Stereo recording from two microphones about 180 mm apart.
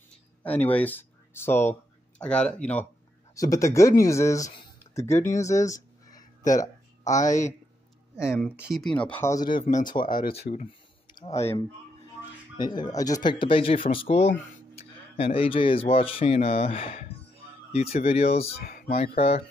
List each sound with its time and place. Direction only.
0.1 s speech: 10° left (ahead or behind)
3.3 s speech: 20° left (ahead or behind)
5.0 s speech: 40° left (ahead or behind)
5.3 s speech: 15° left (ahead or behind)
6.1 s a sound: 45° left (ahead or behind)
7.1 s speech: 40° left (ahead or behind)
8.2 s speech: 5° right (ahead or behind); by 9.7 s 25° left (ahead or behind)
10.2 s speech: 65° left (ahead or behind)
12.5 s speech: 25° left (ahead or behind)
18.6 s speech: 55° left (ahead or behind)
19.1 s speech: 35° left (ahead or behind)